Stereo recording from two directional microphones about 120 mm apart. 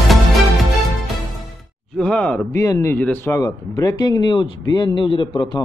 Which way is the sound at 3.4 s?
35° left (ahead or behind).